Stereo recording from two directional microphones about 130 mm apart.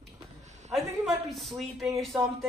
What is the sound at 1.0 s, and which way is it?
Speech, centre (ahead or behind).